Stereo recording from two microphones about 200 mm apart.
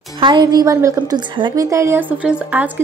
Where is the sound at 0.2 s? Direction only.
20° right (ahead or behind).